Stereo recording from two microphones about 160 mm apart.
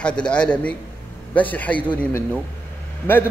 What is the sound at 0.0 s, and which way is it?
Speech, 5° left (ahead or behind).